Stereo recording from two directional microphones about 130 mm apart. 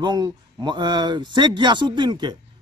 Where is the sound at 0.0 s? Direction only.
35° right (ahead or behind).